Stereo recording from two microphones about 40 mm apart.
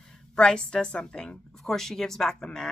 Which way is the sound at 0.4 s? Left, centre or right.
Left.